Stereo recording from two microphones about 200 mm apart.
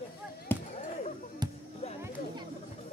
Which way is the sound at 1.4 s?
20° right (ahead or behind).